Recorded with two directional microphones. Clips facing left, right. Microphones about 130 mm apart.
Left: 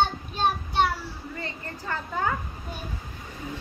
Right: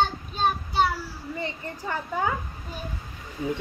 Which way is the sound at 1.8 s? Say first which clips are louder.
Right 1 dB; 15° right (ahead or behind).